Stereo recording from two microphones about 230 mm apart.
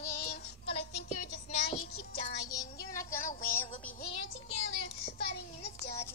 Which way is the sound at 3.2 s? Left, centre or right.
Left.